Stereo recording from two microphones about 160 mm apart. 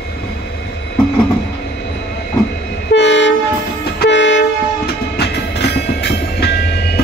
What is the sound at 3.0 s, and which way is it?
Train, 90° left.